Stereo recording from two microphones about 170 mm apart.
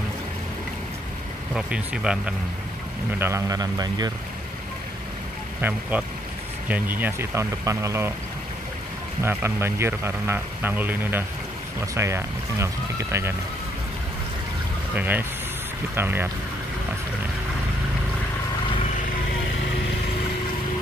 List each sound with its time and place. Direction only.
1.5 s speech: 5° right (ahead or behind)
3.2 s speech: 15° right (ahead or behind)
5.6 s a man's voice: 10° right (ahead or behind)
9.2 s a man's voice: 15° right (ahead or behind)
15.0 s a man's voice: 10° right (ahead or behind)